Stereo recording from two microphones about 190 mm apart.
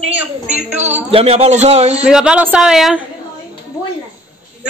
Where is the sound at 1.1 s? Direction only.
30° right (ahead or behind).